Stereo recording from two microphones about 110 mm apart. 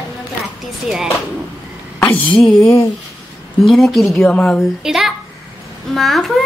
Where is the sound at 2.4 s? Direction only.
5° left (ahead or behind).